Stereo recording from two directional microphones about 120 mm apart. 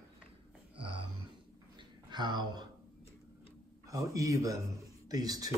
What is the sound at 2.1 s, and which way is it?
Speech, 40° right (ahead or behind).